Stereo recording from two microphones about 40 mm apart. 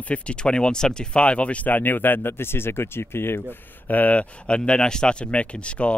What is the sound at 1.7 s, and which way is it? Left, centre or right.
Speech, left.